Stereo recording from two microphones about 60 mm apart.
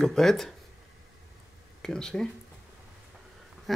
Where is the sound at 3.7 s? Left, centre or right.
Centre.